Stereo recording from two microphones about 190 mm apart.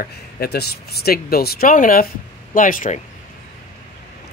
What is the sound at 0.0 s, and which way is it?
Speech, 55° left (ahead or behind).